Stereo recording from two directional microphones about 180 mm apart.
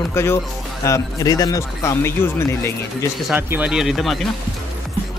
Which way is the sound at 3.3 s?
10° right (ahead or behind).